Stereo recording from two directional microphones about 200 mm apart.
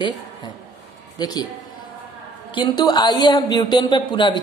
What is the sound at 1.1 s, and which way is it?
Speech, 20° left (ahead or behind).